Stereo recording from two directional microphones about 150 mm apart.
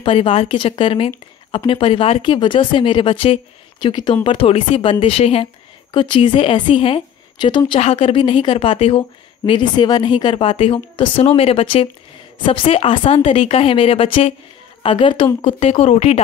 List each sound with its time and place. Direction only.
0.0 s a woman's voice: 40° left (ahead or behind)